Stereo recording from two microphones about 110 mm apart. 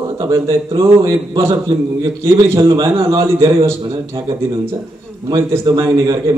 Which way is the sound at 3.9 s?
50° right (ahead or behind).